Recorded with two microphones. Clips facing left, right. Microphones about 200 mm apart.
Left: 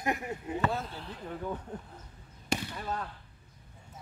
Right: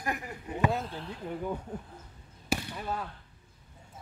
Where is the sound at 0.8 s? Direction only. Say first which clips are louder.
Right 3 dB; centre (ahead or behind).